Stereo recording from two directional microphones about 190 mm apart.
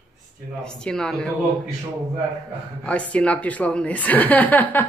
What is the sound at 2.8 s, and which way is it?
A woman's voice, 5° left (ahead or behind).